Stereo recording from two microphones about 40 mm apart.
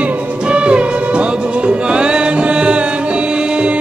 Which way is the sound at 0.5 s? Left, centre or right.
Right.